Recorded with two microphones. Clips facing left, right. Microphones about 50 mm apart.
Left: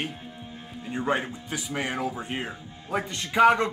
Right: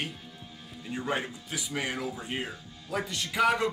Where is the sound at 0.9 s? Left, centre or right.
Left.